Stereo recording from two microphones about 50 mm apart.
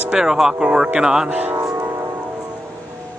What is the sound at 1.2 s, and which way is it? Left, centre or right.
Speech, right.